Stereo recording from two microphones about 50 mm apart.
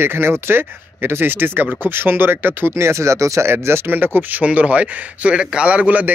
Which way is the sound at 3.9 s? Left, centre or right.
Right.